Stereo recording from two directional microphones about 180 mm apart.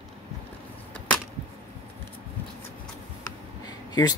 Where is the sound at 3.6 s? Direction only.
20° left (ahead or behind).